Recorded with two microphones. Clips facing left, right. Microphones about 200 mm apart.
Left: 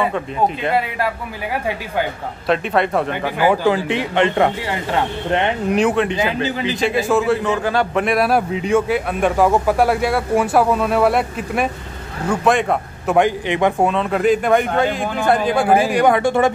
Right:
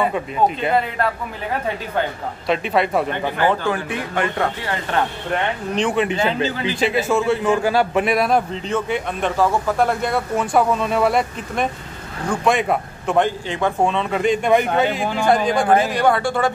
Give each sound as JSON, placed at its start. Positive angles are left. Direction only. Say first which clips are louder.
{"t": 0.7, "sound": "a man's voice", "louder": "even", "side_deg": 10}
{"t": 2.4, "sound": "a man's voice", "louder": "left 2 dB", "side_deg": 0}
{"t": 3.1, "sound": "a man's voice", "louder": "left 2 dB", "side_deg": 10}
{"t": 3.9, "sound": "speech", "louder": "left 5 dB", "side_deg": 20}
{"t": 5.8, "sound": "a man's voice", "louder": "left 2 dB", "side_deg": 5}
{"t": 6.2, "sound": "a man's voice", "louder": "even", "side_deg": 15}
{"t": 6.8, "sound": "a man's voice", "louder": "left 1 dB", "side_deg": 0}
{"t": 13.8, "sound": "a man's voice", "louder": "left 3 dB", "side_deg": 0}